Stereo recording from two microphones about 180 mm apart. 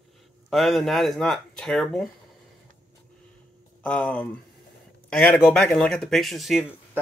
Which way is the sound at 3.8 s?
5° left (ahead or behind).